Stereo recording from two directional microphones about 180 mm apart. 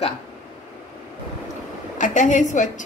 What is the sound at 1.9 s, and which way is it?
Speech, 45° left (ahead or behind).